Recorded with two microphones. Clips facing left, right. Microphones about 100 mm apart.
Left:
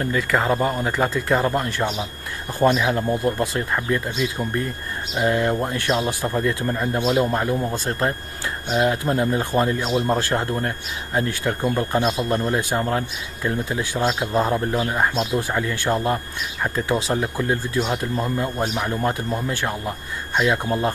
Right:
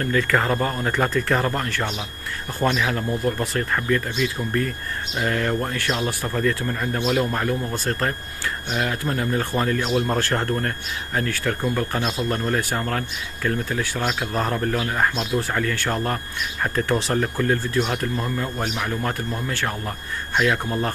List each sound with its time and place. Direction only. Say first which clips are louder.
0.0 s speech: even; 15° left (ahead or behind); by 18.4 s 30° left (ahead or behind)
18.4 s speech: left 3 dB; 15° left (ahead or behind)